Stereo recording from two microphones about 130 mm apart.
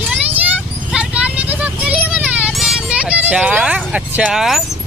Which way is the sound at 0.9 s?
10° right (ahead or behind).